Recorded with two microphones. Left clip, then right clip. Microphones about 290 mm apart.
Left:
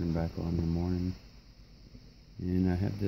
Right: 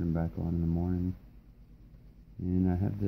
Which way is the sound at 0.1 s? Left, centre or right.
Centre.